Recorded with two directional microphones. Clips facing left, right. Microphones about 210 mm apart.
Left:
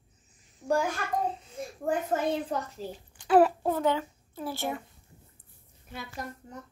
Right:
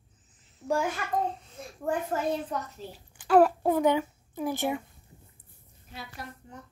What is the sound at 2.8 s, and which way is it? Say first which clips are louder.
Speech: left 4 dB; 40° left (ahead or behind).